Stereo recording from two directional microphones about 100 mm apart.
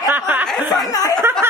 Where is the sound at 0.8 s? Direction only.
35° left (ahead or behind).